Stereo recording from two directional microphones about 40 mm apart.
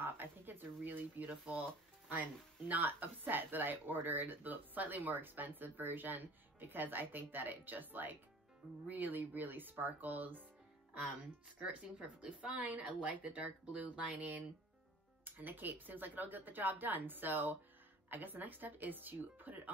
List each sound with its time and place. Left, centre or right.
0.0 s speech: right
1.3 s speech: right
2.7 s speech: right
11.6 s speech: right
15.2 s speech: right